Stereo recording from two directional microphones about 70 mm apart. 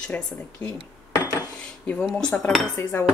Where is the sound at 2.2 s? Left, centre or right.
Centre.